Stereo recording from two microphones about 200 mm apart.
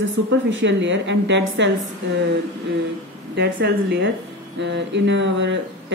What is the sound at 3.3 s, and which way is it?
Speech, 60° right (ahead or behind).